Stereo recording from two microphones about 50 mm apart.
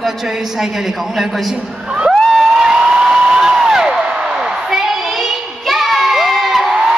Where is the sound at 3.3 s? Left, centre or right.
Centre.